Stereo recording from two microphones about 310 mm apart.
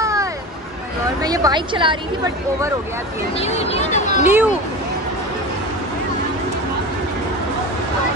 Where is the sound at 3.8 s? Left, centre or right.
Left.